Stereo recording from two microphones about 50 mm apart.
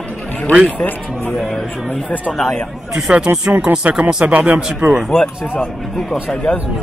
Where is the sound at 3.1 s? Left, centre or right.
Right.